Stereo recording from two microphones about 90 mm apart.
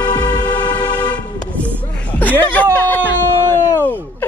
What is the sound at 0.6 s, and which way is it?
Vehicle, 55° left (ahead or behind).